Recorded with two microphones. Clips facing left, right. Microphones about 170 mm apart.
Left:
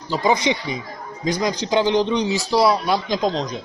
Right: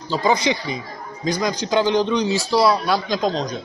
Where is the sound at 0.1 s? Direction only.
20° left (ahead or behind).